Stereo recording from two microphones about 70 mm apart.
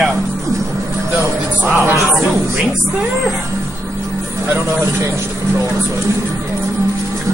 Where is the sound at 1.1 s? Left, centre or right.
Right.